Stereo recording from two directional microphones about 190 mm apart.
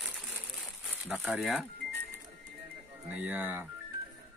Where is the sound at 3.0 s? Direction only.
10° right (ahead or behind).